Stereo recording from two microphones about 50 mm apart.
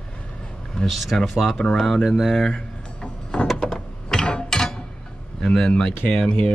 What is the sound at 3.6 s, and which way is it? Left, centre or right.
Mechanisms, centre.